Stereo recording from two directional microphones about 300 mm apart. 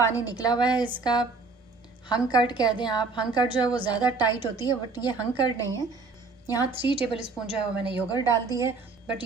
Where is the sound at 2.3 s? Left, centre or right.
Centre.